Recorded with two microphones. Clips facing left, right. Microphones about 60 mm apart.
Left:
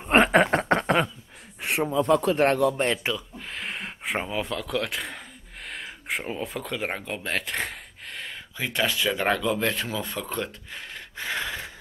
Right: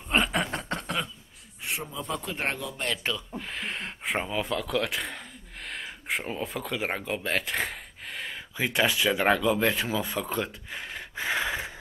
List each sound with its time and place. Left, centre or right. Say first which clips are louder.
0.0 s a sound: left 8 dB; left
1.6 s speech: left 10 dB; left
3.0 s speech: left 2 dB; centre